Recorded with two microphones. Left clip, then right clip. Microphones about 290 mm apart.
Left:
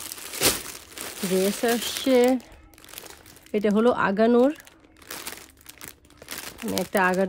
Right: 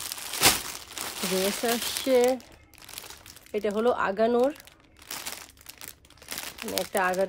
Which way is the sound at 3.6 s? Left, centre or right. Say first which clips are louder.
Left 4 dB; left.